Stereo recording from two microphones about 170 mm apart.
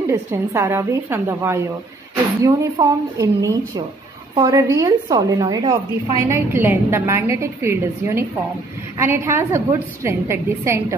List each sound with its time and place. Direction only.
0.0 s a woman's voice: 20° right (ahead or behind)